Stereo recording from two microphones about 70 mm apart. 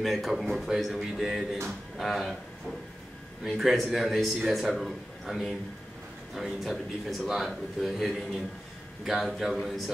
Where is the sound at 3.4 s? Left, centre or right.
Centre.